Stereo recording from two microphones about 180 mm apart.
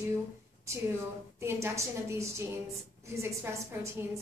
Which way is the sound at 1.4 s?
15° right (ahead or behind).